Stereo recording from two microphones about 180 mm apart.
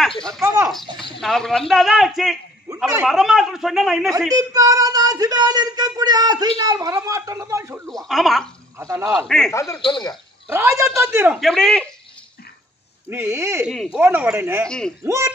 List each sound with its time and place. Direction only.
1.2 s a man's voice: centre (ahead or behind)
4.4 s child singing: 20° right (ahead or behind)
7.9 s a man's voice: centre (ahead or behind)
8.7 s speech: 15° right (ahead or behind)
9.1 s a man's voice: 5° left (ahead or behind)
9.5 s speech: 15° left (ahead or behind)
10.5 s speech: 15° right (ahead or behind)
11.3 s a man's voice: centre (ahead or behind)
13.1 s speech: 15° right (ahead or behind)
14.7 s a man's voice: 5° left (ahead or behind)
15.0 s speech: 15° right (ahead or behind)